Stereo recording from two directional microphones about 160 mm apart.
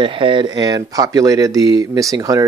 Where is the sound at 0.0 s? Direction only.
30° right (ahead or behind).